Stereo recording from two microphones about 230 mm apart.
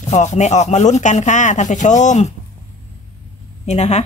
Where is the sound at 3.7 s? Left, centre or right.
Left.